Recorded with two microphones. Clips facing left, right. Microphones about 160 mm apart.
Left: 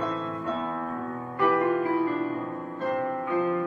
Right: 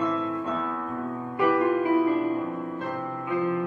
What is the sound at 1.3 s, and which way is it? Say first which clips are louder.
Music: right 1 dB; 15° right (ahead or behind).